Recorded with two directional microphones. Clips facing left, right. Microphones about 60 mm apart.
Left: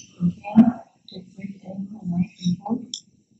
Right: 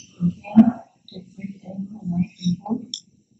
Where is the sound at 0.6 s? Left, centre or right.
Centre.